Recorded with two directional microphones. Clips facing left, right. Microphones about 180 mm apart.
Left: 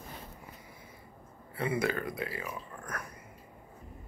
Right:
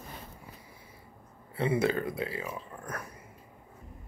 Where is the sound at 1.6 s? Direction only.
25° right (ahead or behind).